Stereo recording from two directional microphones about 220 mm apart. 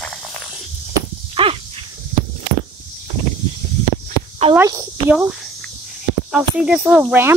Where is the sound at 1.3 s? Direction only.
25° right (ahead or behind).